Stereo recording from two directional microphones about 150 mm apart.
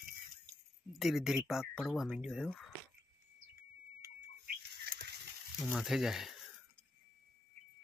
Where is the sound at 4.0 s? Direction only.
90° right.